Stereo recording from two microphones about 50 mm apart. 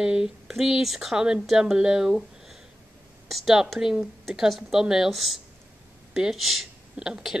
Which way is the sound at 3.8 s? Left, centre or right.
Centre.